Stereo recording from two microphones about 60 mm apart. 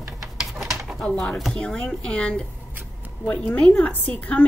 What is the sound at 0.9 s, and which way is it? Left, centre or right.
A woman's voice, centre.